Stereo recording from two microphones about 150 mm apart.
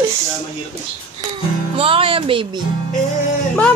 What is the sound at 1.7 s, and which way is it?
Music, 40° right (ahead or behind).